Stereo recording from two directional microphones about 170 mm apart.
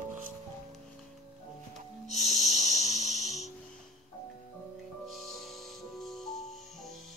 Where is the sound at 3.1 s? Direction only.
40° left (ahead or behind).